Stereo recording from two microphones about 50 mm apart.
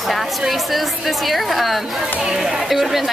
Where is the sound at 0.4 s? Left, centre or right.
Centre.